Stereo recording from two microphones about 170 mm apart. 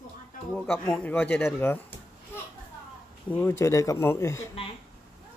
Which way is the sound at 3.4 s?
15° left (ahead or behind).